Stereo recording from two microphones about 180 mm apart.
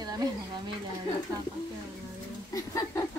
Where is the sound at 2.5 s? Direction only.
20° left (ahead or behind).